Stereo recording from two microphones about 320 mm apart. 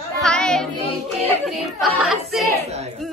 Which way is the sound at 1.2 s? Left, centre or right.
Centre.